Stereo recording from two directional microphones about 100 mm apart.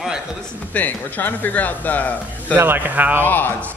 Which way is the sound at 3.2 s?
15° left (ahead or behind).